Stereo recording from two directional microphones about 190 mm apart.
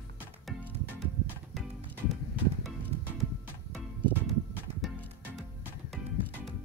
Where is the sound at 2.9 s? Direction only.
35° right (ahead or behind).